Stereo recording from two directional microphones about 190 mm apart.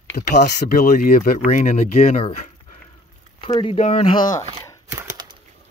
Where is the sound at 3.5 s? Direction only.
30° left (ahead or behind).